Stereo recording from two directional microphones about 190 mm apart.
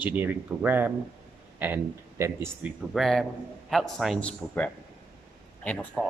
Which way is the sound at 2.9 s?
Centre (ahead or behind).